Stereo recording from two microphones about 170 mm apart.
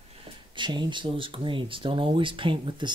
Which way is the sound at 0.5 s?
25° right (ahead or behind).